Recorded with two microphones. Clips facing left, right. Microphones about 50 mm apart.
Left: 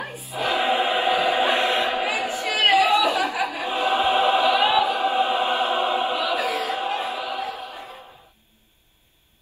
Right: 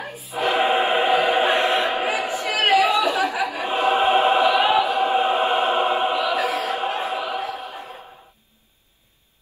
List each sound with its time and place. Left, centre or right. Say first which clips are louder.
0.0 s choir: even; left
0.3 s choir: right 3 dB; right